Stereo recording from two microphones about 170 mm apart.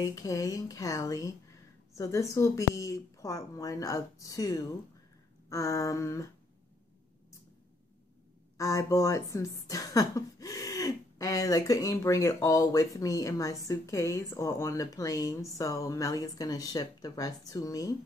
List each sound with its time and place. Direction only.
0.0 s speech: 20° left (ahead or behind)
5.5 s a sound: 20° left (ahead or behind)
8.5 s speech: 20° left (ahead or behind)